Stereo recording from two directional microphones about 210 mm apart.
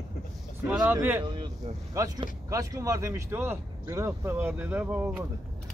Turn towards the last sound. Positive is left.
turn(degrees=-5)  # may be behind; listen again after turning